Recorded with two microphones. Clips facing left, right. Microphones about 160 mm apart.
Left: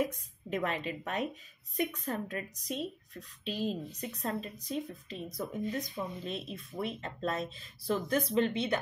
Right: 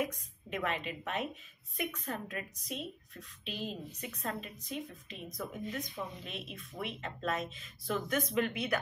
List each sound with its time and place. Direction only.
0.0 s speech: 35° left (ahead or behind)